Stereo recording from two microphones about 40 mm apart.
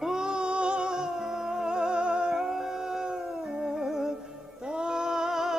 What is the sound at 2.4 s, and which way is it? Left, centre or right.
Music, centre.